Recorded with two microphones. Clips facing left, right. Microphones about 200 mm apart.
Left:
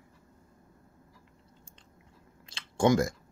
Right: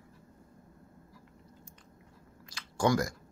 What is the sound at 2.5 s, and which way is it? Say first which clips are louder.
Clicking: left 4 dB; 25° left (ahead or behind).